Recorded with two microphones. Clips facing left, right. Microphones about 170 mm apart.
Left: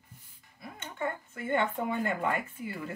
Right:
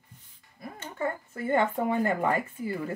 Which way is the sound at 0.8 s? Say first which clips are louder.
Right 3 dB; 35° right (ahead or behind).